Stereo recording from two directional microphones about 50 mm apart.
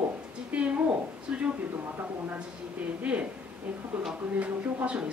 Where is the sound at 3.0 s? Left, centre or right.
Right.